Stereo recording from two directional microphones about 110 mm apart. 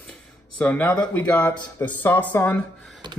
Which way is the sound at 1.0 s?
10° left (ahead or behind).